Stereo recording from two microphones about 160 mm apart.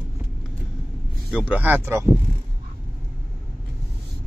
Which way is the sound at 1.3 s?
10° right (ahead or behind).